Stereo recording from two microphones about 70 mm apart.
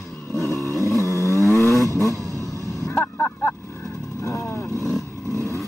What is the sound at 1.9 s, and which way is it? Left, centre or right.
Vehicle, left.